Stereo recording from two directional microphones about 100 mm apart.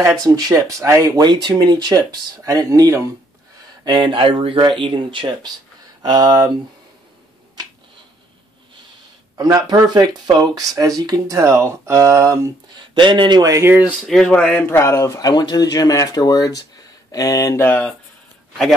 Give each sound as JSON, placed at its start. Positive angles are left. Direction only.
{"t": 0.0, "sound": "speech", "side_deg": -40}
{"t": 3.8, "sound": "speech", "side_deg": -50}
{"t": 9.4, "sound": "speech", "side_deg": -40}
{"t": 12.7, "sound": "speech", "side_deg": -50}
{"t": 13.7, "sound": "speech", "side_deg": -20}
{"t": 14.0, "sound": "a man's voice", "side_deg": 10}
{"t": 15.1, "sound": "speech", "side_deg": 45}